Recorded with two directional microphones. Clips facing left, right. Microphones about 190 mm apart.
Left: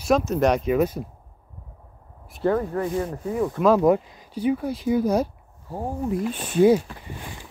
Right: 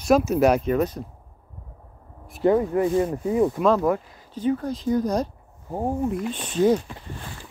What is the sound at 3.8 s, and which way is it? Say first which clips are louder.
Speech: left 4 dB; 15° left (ahead or behind).